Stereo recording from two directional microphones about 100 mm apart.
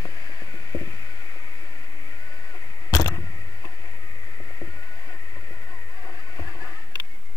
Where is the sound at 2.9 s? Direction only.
35° left (ahead or behind).